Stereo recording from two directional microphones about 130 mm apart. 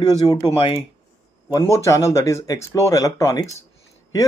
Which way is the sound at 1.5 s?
25° left (ahead or behind).